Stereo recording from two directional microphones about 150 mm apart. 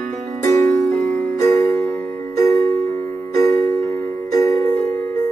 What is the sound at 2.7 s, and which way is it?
Music, 15° left (ahead or behind).